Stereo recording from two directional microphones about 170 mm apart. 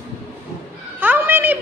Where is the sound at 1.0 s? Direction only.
10° right (ahead or behind).